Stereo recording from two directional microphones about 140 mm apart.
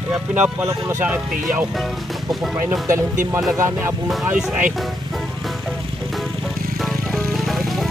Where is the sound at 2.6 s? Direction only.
20° right (ahead or behind).